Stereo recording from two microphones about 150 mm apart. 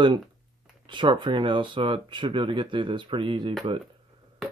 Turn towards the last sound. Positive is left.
turn(degrees=-35)  # may be behind; listen again after turning